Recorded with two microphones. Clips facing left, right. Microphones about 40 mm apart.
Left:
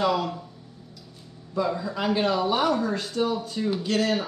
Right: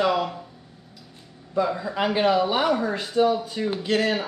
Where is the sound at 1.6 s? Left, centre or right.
Centre.